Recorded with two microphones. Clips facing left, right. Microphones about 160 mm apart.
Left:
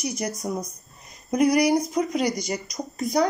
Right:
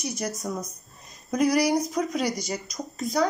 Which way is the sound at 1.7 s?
10° left (ahead or behind).